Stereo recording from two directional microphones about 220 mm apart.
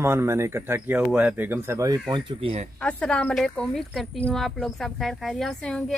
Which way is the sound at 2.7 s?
5° left (ahead or behind).